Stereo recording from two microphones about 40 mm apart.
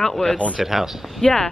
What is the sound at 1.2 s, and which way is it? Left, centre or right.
Speech, centre.